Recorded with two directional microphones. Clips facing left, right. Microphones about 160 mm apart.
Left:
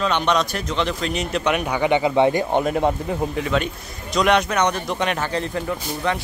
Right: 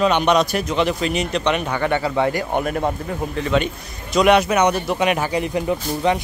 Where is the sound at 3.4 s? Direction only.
Centre (ahead or behind).